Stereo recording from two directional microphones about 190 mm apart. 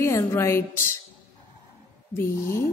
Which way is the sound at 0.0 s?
15° left (ahead or behind).